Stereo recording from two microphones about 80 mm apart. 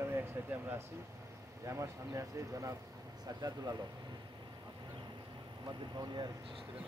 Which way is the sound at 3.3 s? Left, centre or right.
Right.